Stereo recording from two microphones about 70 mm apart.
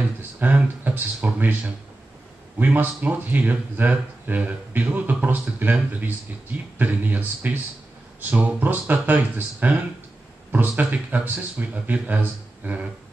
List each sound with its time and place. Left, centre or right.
0.4 s speech: right